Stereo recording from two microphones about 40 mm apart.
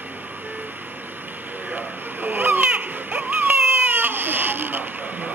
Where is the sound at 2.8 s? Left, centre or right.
Right.